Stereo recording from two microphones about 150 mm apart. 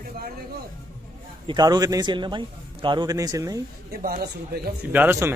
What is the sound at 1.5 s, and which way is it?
A man's voice, 25° right (ahead or behind).